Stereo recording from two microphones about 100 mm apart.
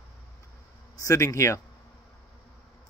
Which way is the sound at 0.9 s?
30° left (ahead or behind).